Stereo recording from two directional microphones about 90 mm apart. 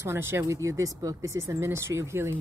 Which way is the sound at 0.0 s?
25° right (ahead or behind).